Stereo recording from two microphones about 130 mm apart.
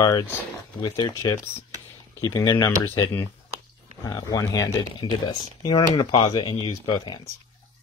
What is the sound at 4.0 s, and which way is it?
Speech, 30° left (ahead or behind).